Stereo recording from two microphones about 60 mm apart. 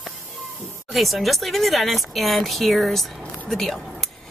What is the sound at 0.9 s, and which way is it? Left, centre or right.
A woman's voice, centre.